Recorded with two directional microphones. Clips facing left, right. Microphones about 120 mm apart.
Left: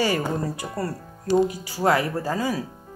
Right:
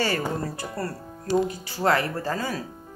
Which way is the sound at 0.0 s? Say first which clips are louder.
Left 3 dB; 15° left (ahead or behind).